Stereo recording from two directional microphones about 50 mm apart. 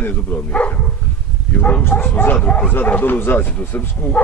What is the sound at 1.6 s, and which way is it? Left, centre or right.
A man's voice, left.